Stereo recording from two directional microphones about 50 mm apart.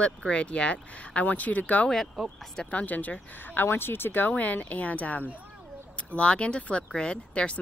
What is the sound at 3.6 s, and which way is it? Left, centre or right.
Speech, left.